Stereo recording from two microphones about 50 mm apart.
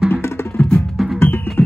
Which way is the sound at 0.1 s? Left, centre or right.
Left.